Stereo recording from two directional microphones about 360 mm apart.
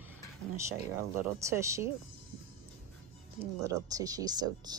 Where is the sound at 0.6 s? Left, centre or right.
Centre.